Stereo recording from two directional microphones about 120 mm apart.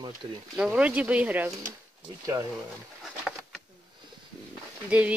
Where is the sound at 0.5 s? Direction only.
5° right (ahead or behind).